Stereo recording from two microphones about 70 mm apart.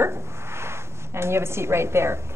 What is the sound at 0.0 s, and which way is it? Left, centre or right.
A woman's voice, right.